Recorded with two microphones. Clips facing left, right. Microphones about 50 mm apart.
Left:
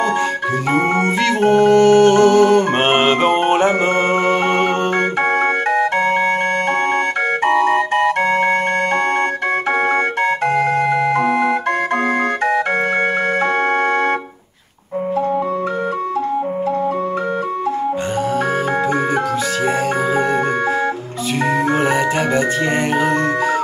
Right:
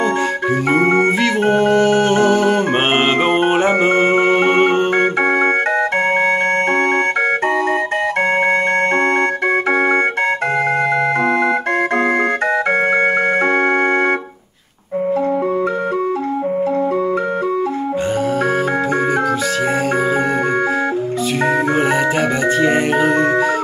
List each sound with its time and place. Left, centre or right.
0.7 s organ: centre
5.4 s music: right
7.4 s music: right
10.9 s music: right
22.6 s music: centre